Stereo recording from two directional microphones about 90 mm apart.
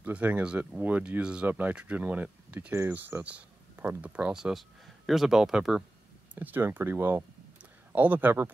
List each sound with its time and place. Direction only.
0.0 s speech: 20° right (ahead or behind)
6.3 s speech: 20° right (ahead or behind)